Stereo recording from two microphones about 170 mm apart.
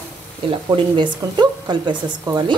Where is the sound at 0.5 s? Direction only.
30° right (ahead or behind).